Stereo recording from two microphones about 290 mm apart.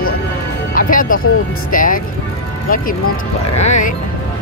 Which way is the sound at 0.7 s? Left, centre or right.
Left.